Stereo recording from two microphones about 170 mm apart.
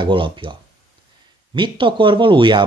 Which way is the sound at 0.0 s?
30° right (ahead or behind).